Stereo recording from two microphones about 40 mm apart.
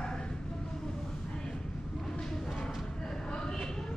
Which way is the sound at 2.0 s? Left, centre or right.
Centre.